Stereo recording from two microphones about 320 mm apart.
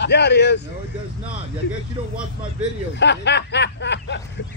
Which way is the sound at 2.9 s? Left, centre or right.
Left.